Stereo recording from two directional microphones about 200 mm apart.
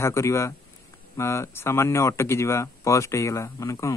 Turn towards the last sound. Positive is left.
turn(degrees=15)  # may be behind; listen again after turning